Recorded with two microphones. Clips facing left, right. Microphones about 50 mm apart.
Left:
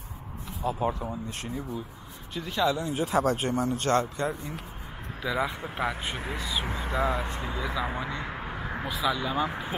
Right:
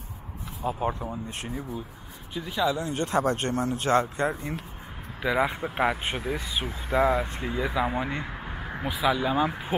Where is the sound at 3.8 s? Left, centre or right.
Right.